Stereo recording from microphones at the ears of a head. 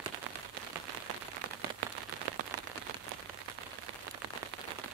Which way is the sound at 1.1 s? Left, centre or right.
Right.